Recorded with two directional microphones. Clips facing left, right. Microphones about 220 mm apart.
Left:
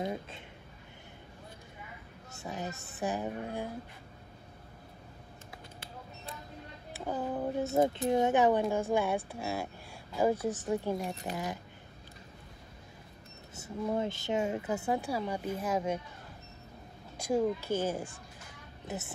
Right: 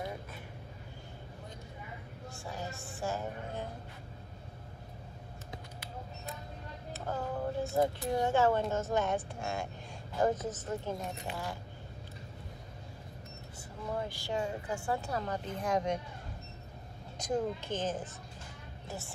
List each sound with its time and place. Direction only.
2.3 s a woman's voice: 20° left (ahead or behind)
6.9 s speech: 15° left (ahead or behind)
11.3 s speech: 40° left (ahead or behind)
13.6 s speech: 25° left (ahead or behind); by 16.0 s 5° left (ahead or behind)
17.2 s speech: 10° left (ahead or behind)
18.9 s a woman's voice: 20° left (ahead or behind)